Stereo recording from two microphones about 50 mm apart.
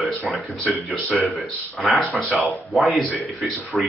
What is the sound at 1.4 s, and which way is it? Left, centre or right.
Speech, centre.